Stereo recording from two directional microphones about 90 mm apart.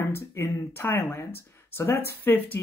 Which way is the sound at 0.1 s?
30° left (ahead or behind).